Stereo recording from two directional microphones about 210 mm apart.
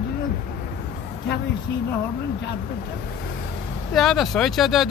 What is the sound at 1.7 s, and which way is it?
Speech, 55° left (ahead or behind).